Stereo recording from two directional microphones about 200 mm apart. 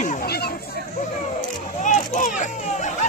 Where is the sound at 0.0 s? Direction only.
45° left (ahead or behind).